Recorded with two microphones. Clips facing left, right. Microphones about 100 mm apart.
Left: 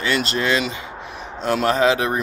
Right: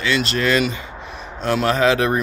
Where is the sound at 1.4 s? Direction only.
35° left (ahead or behind).